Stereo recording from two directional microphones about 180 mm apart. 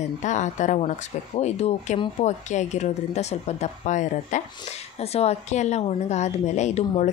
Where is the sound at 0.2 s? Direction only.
40° left (ahead or behind).